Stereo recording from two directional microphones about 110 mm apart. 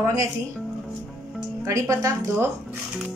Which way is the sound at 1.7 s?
30° right (ahead or behind).